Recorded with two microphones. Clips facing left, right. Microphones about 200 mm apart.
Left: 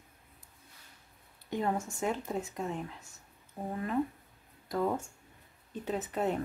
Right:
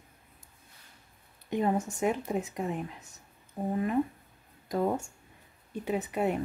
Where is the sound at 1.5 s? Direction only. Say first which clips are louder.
Right 4 dB; 20° right (ahead or behind).